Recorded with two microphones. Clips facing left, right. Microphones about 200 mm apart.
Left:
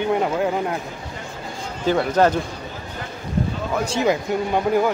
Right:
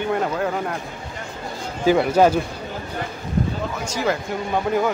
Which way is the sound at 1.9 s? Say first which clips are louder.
Right 2 dB; 10° right (ahead or behind).